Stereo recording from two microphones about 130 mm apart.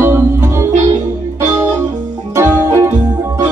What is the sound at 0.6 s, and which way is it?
Organ, 65° right (ahead or behind).